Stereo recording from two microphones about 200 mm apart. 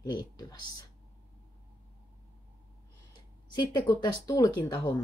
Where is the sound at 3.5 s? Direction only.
20° left (ahead or behind).